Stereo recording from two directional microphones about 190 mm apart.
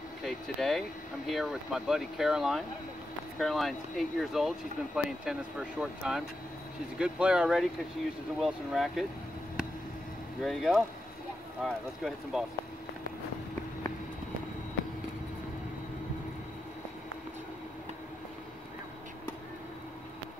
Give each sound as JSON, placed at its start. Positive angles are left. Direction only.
{"t": 0.2, "sound": "speech", "side_deg": 0}
{"t": 10.4, "sound": "speech", "side_deg": 0}